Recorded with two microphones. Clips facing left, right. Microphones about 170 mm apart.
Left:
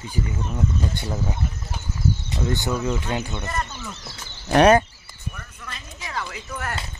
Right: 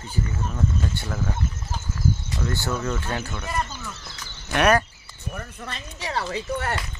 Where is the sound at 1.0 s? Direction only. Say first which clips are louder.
Left 1 dB; 15° left (ahead or behind).